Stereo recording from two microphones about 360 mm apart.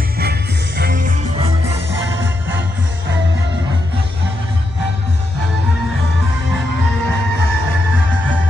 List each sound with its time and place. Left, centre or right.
0.2 s music: right
1.9 s music: right